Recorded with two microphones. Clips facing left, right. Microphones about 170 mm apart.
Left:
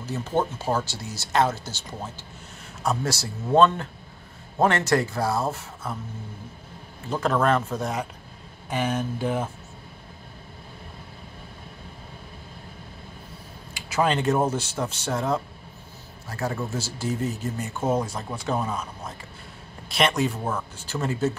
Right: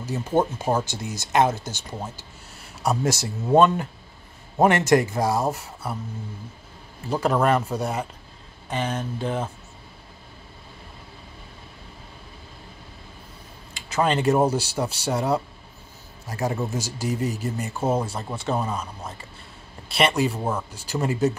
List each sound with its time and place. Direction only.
0.0 s speech: 10° right (ahead or behind)
7.1 s speech: 10° right (ahead or behind); by 9.5 s 5° left (ahead or behind)
13.9 s speech: centre (ahead or behind)